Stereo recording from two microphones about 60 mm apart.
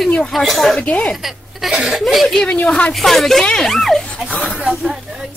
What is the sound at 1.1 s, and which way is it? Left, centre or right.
Speech, centre.